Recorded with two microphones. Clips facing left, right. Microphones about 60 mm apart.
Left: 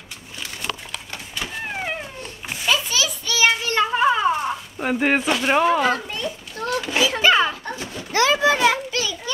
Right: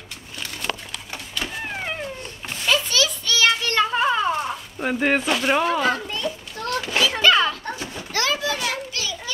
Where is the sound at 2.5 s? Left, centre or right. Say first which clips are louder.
Even; centre.